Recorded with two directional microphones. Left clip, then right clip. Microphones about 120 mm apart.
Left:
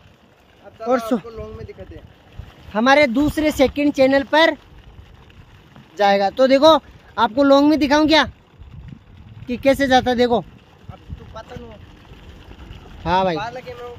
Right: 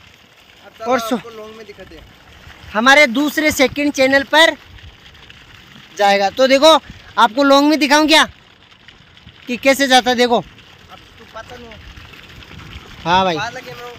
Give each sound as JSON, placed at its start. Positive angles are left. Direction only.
{"t": 0.8, "sound": "speech", "side_deg": 20}
{"t": 1.2, "sound": "speech", "side_deg": -10}
{"t": 2.7, "sound": "speech", "side_deg": 0}
{"t": 5.9, "sound": "speech", "side_deg": -20}
{"t": 9.5, "sound": "speech", "side_deg": -5}
{"t": 11.4, "sound": "boat", "side_deg": -15}
{"t": 11.7, "sound": "boat", "side_deg": 45}
{"t": 13.0, "sound": "speech", "side_deg": -40}
{"t": 13.4, "sound": "speech", "side_deg": -10}